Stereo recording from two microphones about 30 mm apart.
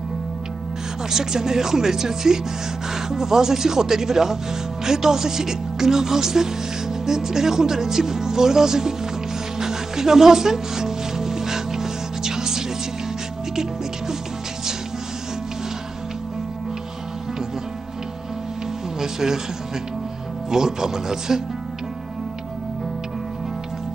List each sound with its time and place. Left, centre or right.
1.1 s speech: centre
9.6 s music: centre
18.9 s a sound: centre
20.4 s speech: centre